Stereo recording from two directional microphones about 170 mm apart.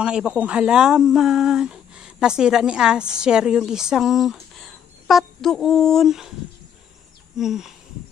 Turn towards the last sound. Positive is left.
turn(degrees=0)  # may be behind; listen again after turning